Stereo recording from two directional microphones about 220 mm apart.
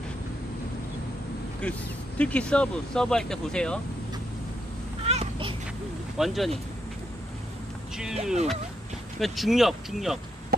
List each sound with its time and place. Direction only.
1.6 s speech: 5° left (ahead or behind)
5.0 s vehicle: 25° right (ahead or behind)
6.1 s speech: centre (ahead or behind)
8.0 s speech: 5° right (ahead or behind)